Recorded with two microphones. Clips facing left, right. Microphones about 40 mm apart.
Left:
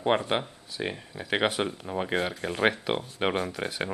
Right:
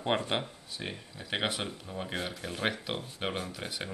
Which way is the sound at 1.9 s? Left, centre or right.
Left.